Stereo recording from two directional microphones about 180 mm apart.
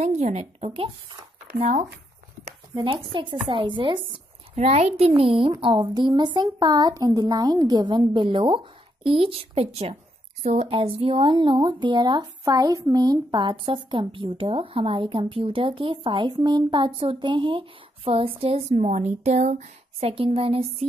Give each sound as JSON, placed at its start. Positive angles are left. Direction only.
{"t": 0.0, "sound": "speech", "side_deg": -40}
{"t": 1.6, "sound": "speech", "side_deg": -40}
{"t": 2.7, "sound": "speech", "side_deg": -25}